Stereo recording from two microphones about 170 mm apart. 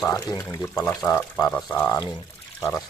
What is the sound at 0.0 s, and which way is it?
Speech, 20° left (ahead or behind).